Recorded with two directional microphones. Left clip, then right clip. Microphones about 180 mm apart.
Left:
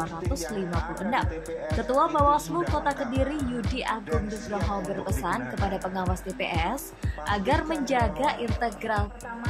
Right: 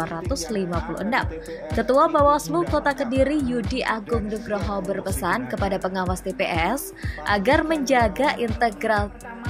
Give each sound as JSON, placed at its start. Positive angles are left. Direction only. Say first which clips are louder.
{"t": 0.0, "sound": "speech", "louder": "right 4 dB", "side_deg": -25}
{"t": 1.8, "sound": "speech", "louder": "right 6 dB", "side_deg": -25}
{"t": 5.2, "sound": "speech", "louder": "right 5 dB", "side_deg": -30}